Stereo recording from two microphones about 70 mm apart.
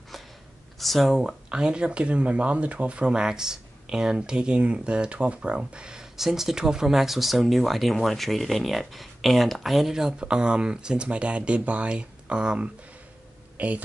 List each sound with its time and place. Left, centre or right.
0.7 s speech: centre; by 13.8 s right